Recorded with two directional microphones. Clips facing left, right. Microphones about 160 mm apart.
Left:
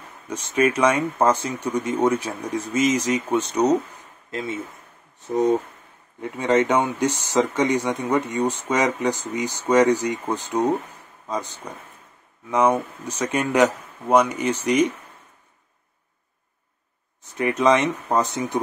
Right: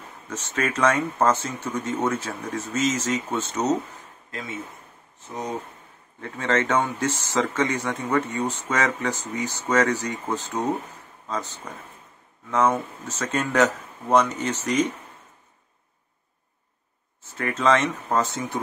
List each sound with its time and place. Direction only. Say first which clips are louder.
0.3 s speech: left 7 dB; 10° left (ahead or behind)
4.3 s speech: left 6 dB; 25° left (ahead or behind)
6.2 s speech: left 5 dB; 15° left (ahead or behind)
17.2 s speech: left 4 dB; 15° left (ahead or behind)